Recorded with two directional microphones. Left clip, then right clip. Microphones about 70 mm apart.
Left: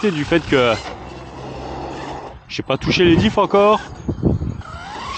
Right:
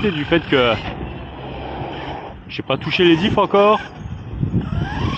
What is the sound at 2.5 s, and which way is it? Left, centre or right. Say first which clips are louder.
Speech: left 1 dB; left.